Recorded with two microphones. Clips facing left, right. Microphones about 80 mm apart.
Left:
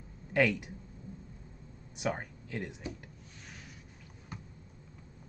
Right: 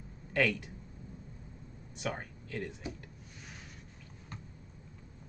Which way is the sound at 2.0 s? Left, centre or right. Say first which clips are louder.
Left 3 dB; centre.